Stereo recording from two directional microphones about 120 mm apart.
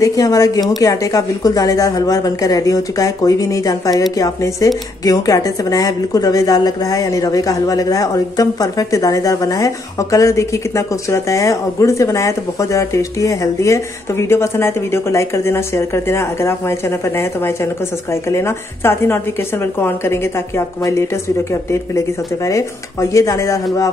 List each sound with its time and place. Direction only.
0.0 s a woman's voice: 30° left (ahead or behind)
18.3 s a woman's voice: 20° left (ahead or behind)
22.5 s a woman's voice: 25° left (ahead or behind)